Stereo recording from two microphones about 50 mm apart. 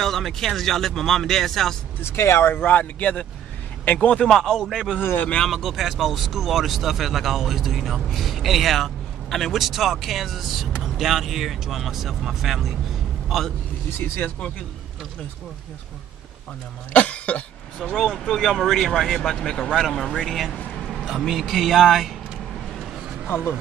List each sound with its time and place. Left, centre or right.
0.0 s speech: centre
2.0 s speech: left
2.5 s a man's voice: left
4.3 s speech: centre
5.0 s speech: left
5.5 s speech: centre
13.8 s speech: left
16.9 s cough: left
17.9 s speech: centre
23.2 s speech: left